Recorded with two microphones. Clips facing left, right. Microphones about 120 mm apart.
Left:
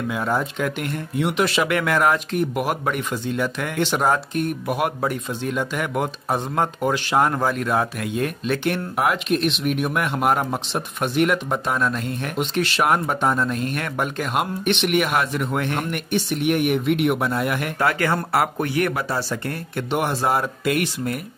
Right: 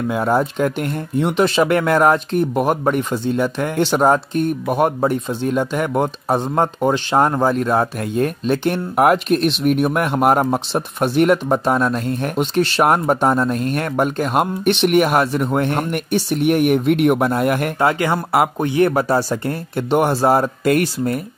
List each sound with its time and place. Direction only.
0.1 s speech: 40° right (ahead or behind)
8.9 s speech: 45° right (ahead or behind)
17.7 s speech: 20° right (ahead or behind)
18.9 s speech: 45° right (ahead or behind)